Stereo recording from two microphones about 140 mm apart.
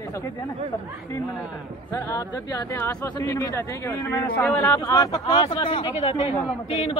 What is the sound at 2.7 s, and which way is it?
Speech, 15° left (ahead or behind).